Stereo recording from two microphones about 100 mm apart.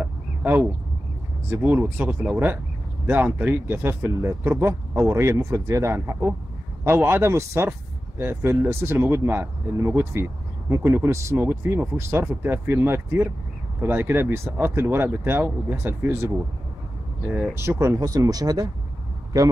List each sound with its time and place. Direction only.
0.0 s a sound: 15° right (ahead or behind)
1.5 s speech: 20° right (ahead or behind)
17.2 s speech: 10° right (ahead or behind)
17.6 s speech: 25° right (ahead or behind)